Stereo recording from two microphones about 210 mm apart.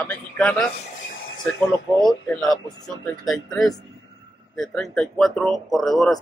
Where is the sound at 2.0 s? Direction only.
Centre (ahead or behind).